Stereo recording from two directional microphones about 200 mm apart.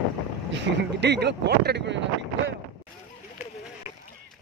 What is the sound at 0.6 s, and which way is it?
Speech, 60° right (ahead or behind).